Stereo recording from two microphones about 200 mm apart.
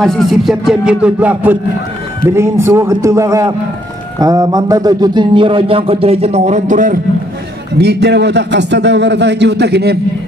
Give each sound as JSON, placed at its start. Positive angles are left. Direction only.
{"t": 0.0, "sound": "music", "side_deg": 0}
{"t": 2.2, "sound": "a man's voice", "side_deg": -15}
{"t": 4.2, "sound": "a sound", "side_deg": -20}
{"t": 7.8, "sound": "a man's voice", "side_deg": -55}